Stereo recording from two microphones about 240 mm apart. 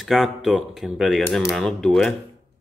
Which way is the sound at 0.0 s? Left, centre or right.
Centre.